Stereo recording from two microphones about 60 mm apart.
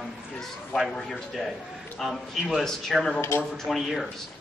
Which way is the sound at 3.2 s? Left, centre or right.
Left.